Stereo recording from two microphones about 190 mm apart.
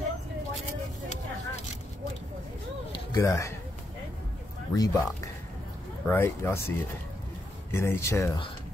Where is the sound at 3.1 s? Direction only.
15° left (ahead or behind).